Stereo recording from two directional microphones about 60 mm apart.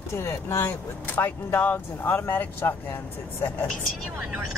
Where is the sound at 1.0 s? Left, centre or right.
Left.